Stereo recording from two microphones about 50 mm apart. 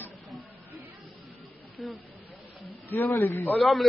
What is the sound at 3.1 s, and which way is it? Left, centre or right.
Speech, left.